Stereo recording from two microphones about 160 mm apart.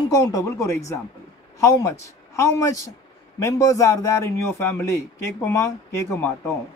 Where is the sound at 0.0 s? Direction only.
20° left (ahead or behind).